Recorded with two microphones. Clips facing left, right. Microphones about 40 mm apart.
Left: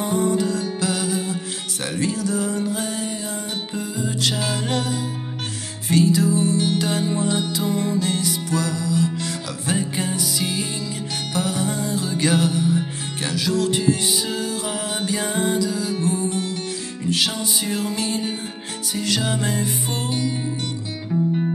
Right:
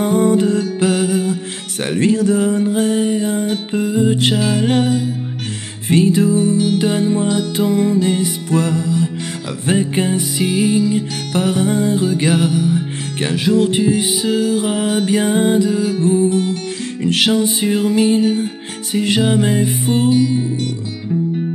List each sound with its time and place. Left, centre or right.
0.0 s music: right; by 7.2 s centre
7.2 s music: right
7.8 s music: right
8.5 s music: right
11.3 s music: right; by 12.8 s centre
13.2 s music: right
16.0 s music: centre
17.0 s music: right
17.3 s music: right
18.2 s music: centre
18.9 s music: right